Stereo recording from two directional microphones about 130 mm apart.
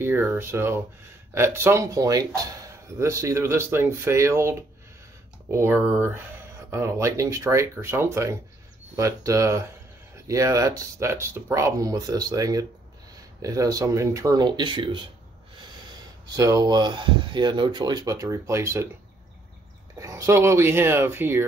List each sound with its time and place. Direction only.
0.0 s speech: 20° right (ahead or behind); by 15.0 s 35° right (ahead or behind)
16.3 s speech: 25° right (ahead or behind)
20.0 s speech: 25° right (ahead or behind)